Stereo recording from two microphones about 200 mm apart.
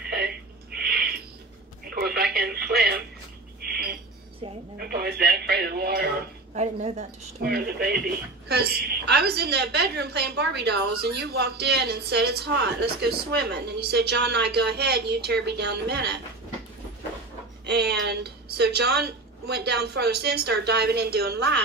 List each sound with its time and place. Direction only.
0.7 s owl: 50° right (ahead or behind)
2.0 s radio: 50° right (ahead or behind)
4.7 s a sound: 50° right (ahead or behind)
6.5 s speech: 35° right (ahead or behind)
7.4 s a woman's voice: 50° right (ahead or behind)
17.6 s a woman's voice: 55° right (ahead or behind)